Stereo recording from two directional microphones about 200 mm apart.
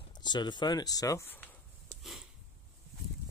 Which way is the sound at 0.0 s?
20° left (ahead or behind).